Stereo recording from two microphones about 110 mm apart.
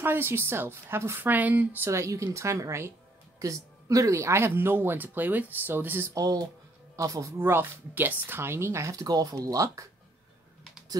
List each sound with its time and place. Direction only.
0.0 s speech: 20° right (ahead or behind)
1.9 s speech: 30° right (ahead or behind)
7.3 s speech: 20° right (ahead or behind)